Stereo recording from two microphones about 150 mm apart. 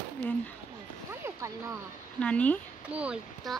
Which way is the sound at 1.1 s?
20° right (ahead or behind).